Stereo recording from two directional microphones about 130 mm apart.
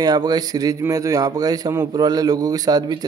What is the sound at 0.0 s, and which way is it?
A man's voice, 30° right (ahead or behind).